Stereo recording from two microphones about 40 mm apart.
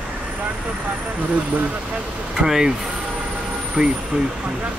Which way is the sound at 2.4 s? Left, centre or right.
Centre.